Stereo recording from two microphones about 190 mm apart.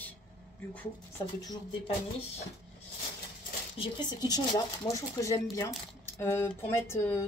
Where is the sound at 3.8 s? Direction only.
20° left (ahead or behind).